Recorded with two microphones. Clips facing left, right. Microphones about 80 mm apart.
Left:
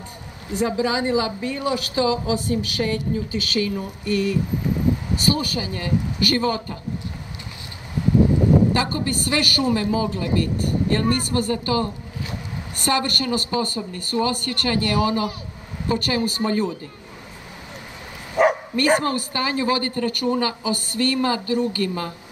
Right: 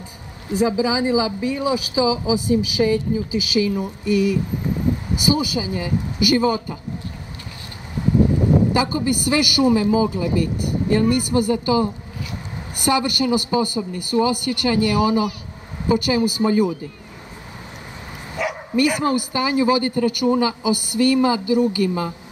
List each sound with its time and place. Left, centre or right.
0.6 s a man's voice: centre
8.7 s a man's voice: centre
18.4 s bow-wow: left
18.7 s a man's voice: right